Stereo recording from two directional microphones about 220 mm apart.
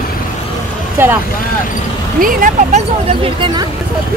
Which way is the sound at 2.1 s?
40° right (ahead or behind).